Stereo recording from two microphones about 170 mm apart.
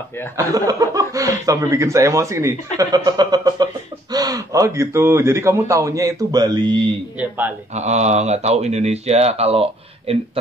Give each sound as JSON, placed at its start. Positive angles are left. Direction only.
{"t": 0.5, "sound": "speech", "side_deg": -20}
{"t": 7.2, "sound": "speech", "side_deg": -10}
{"t": 7.7, "sound": "speech", "side_deg": -40}